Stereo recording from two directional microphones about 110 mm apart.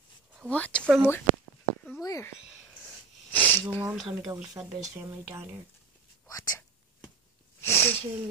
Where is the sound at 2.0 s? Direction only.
30° left (ahead or behind).